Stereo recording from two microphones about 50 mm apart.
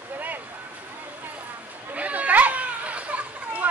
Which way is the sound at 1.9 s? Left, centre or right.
Right.